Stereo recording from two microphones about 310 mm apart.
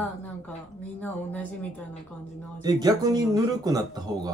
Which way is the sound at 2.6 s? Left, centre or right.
Centre.